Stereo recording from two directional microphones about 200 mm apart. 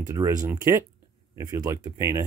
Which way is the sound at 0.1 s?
15° right (ahead or behind).